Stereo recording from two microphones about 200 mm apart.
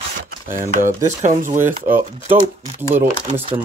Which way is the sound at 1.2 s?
40° right (ahead or behind).